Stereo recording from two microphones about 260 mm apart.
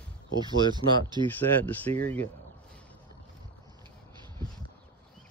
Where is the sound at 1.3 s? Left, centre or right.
Centre.